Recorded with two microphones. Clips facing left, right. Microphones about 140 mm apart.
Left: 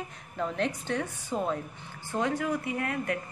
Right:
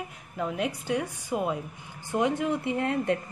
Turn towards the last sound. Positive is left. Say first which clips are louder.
# right 5 dB
turn(degrees=-25)  # may be behind; listen again after turning